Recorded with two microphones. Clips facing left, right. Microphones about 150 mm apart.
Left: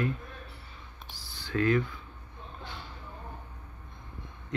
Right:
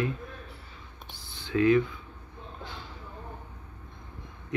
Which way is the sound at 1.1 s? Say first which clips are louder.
Right 2 dB; 20° right (ahead or behind).